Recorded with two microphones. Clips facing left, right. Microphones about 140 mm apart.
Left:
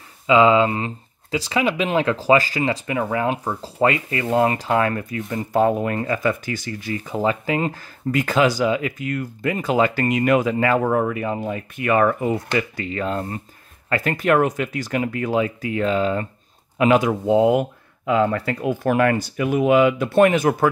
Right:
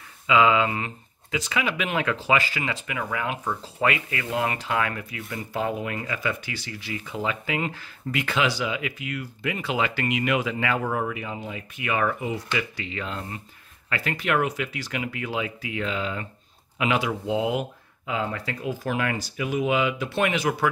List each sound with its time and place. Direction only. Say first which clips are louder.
0.3 s speech: left 5 dB; 30° left (ahead or behind)